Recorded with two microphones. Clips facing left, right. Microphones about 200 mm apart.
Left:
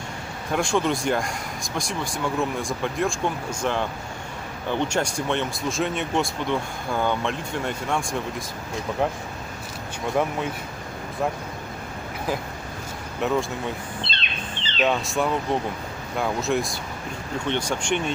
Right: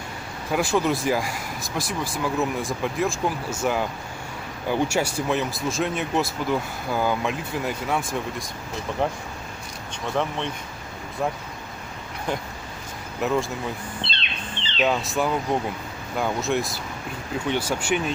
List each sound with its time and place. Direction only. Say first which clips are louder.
0.5 s speech: right 1 dB; 5° right (ahead or behind)
13.2 s speech: even; centre (ahead or behind)
14.0 s bird: left 1 dB; 45° left (ahead or behind)
14.8 s speech: even; centre (ahead or behind)